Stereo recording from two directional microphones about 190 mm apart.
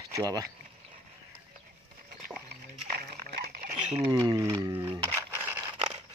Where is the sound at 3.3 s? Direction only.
55° right (ahead or behind).